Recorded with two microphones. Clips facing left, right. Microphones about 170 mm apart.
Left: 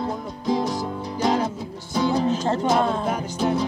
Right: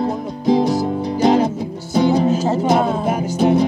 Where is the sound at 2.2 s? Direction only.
5° right (ahead or behind).